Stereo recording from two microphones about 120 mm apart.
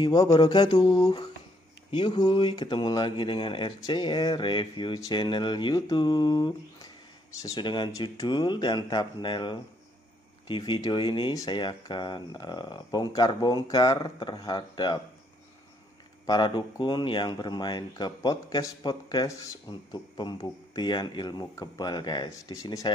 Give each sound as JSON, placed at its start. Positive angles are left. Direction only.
{"t": 0.0, "sound": "speech", "side_deg": 30}
{"t": 1.9, "sound": "speech", "side_deg": 40}
{"t": 16.3, "sound": "speech", "side_deg": 40}